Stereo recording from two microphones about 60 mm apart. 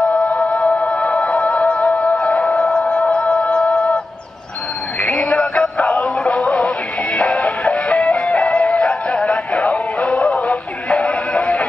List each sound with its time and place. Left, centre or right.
0.1 s music: centre
5.0 s synthetic singing: left
7.2 s music: left